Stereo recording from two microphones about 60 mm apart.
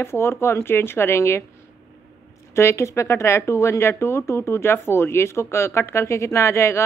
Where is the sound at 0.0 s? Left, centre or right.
Left.